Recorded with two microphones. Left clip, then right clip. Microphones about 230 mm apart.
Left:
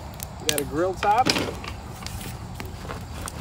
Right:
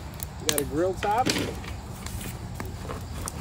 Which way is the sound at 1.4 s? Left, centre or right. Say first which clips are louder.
Left 3 dB; left.